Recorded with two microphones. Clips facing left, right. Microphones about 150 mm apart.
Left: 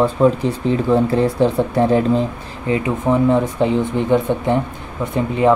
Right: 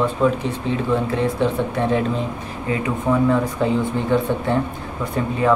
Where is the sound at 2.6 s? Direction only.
25° left (ahead or behind).